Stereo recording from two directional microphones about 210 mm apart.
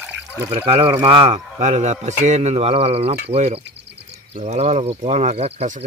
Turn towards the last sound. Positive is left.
turn(degrees=-30)  # may be behind; listen again after turning